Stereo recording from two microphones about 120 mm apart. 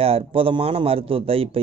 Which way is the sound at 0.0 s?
50° right (ahead or behind).